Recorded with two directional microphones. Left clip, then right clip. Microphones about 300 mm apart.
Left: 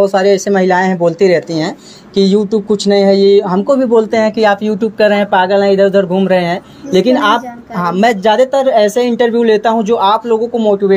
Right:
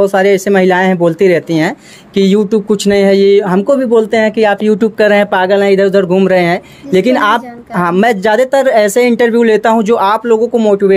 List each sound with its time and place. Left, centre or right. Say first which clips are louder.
0.0 s speech: right 1 dB; right